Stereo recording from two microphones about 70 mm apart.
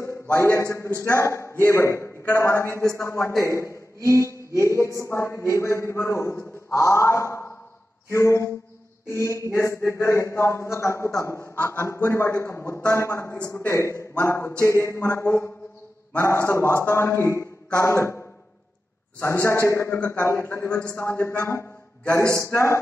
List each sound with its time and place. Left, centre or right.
0.0 s a man's voice: left
4.3 s a sound: right
4.6 s a man's voice: left
11.5 s a man's voice: left
19.4 s a man's voice: left
22.3 s a man's voice: left